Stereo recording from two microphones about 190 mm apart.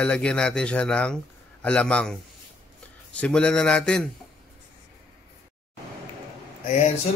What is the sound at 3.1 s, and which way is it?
Speech, 5° left (ahead or behind).